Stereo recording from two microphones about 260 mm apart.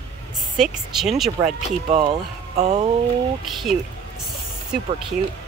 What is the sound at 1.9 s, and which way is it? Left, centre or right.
Speech, centre.